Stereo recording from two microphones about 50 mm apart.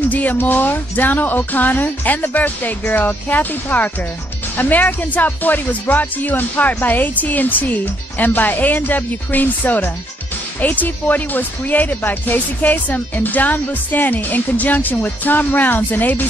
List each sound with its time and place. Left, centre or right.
0.1 s speech: left